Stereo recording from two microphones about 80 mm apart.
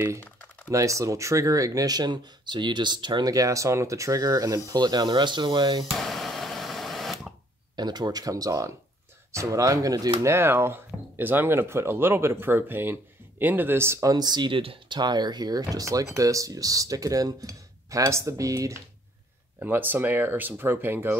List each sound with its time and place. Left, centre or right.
0.7 s speech: right
3.3 s speech: right
4.6 s speech: right
5.9 s a sound: centre
7.7 s speech: right
10.2 s speech: right
14.1 s speech: right
19.6 s speech: right